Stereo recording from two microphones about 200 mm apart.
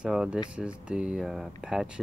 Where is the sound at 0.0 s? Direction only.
5° right (ahead or behind).